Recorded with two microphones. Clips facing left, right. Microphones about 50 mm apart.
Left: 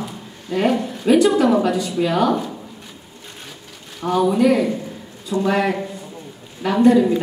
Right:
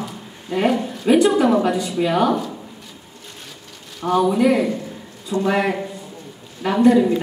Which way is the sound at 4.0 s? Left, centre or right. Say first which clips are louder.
Even; centre.